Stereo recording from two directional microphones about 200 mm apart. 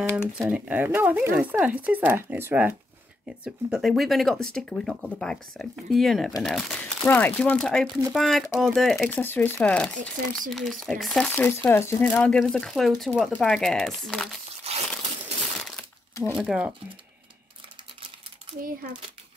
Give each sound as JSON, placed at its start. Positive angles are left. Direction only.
{"t": 0.4, "sound": "speech", "side_deg": -5}
{"t": 14.7, "sound": "crumpling", "side_deg": -30}
{"t": 16.3, "sound": "speech", "side_deg": -5}